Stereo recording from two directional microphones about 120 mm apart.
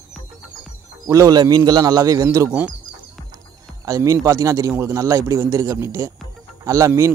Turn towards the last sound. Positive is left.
turn(degrees=-25)  # may be behind; listen again after turning